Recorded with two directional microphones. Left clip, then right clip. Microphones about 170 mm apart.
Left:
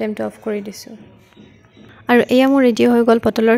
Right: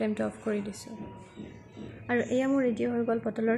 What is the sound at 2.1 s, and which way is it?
Speech, 65° left (ahead or behind).